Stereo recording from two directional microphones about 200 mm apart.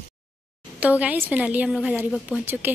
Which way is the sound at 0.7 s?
5° right (ahead or behind).